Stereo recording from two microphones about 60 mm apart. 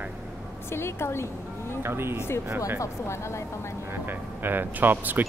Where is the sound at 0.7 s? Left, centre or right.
Left.